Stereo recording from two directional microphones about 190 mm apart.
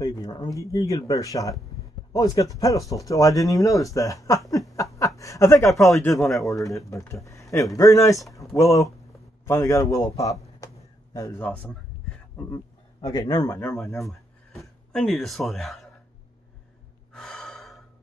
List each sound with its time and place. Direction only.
0.0 s speech: 20° left (ahead or behind)
6.1 s a man's voice: centre (ahead or behind)
6.5 s speech: 15° left (ahead or behind)
10.6 s a sound: 20° left (ahead or behind)
13.0 s a man's voice: 20° left (ahead or behind)
13.9 s speech: centre (ahead or behind)
17.1 s gasp: 5° left (ahead or behind)